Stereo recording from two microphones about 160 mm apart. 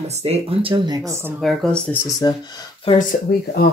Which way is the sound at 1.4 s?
Centre (ahead or behind).